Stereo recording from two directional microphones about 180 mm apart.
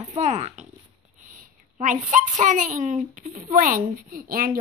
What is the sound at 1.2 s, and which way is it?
A child's voice, 45° right (ahead or behind).